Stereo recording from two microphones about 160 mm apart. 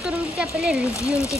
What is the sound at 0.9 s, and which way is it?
Speech, 20° left (ahead or behind).